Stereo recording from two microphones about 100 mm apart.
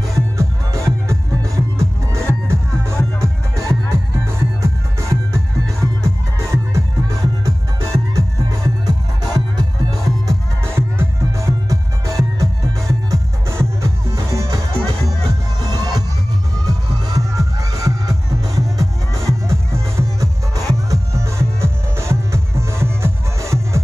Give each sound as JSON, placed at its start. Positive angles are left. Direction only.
{"t": 0.1, "sound": "music", "side_deg": -30}